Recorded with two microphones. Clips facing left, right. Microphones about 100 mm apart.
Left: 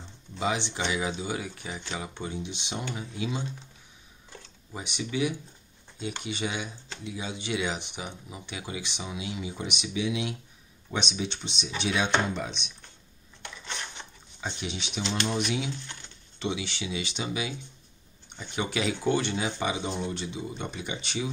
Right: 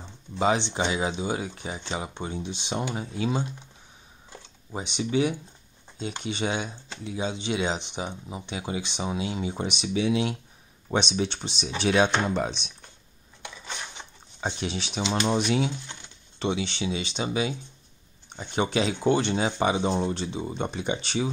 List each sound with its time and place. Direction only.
0.4 s speech: 35° right (ahead or behind)
4.7 s speech: 30° right (ahead or behind)
10.9 s speech: 45° right (ahead or behind)
11.2 s speech: 35° right (ahead or behind)
13.4 s a sound: 10° right (ahead or behind)
14.6 s speech: 35° right (ahead or behind)